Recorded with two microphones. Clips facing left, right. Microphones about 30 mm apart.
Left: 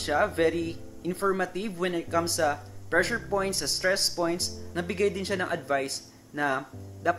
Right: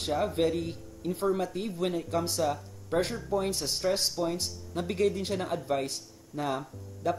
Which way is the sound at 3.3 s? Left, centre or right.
Left.